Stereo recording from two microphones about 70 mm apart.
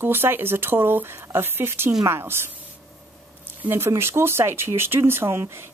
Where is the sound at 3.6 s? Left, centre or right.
Right.